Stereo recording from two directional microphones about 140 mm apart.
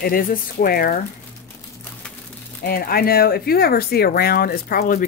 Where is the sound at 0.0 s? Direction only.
90° left.